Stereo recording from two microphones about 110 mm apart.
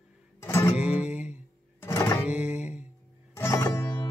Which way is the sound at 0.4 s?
25° left (ahead or behind).